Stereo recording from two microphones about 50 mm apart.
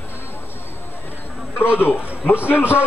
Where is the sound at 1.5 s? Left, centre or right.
Left.